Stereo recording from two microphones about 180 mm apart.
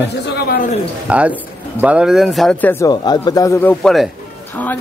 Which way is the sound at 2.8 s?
25° left (ahead or behind).